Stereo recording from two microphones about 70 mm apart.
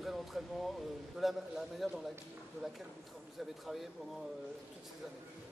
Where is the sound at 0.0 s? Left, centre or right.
Centre.